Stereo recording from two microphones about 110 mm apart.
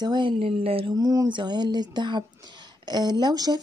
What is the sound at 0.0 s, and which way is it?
Speech, 45° right (ahead or behind).